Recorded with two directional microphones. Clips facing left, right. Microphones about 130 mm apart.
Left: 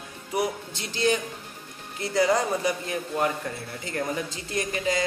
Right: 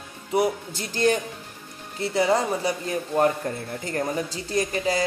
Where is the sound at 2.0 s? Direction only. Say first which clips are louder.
Right 1 dB; 25° right (ahead or behind).